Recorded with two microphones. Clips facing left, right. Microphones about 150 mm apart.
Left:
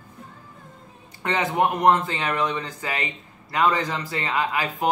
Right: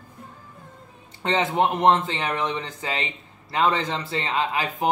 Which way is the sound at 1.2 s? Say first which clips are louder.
Right 1 dB; 25° right (ahead or behind).